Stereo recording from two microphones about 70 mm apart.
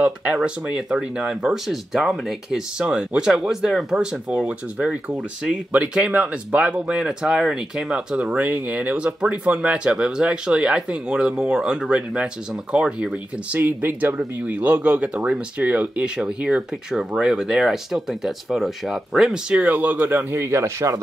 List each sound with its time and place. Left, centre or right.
0.0 s speech: centre
2.8 s speech: centre
4.3 s speech: centre
8.5 s speech: right
13.6 s speech: right; by 19.6 s centre
19.6 s speech: right